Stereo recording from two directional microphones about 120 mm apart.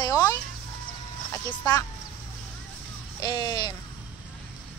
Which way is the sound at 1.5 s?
35° left (ahead or behind).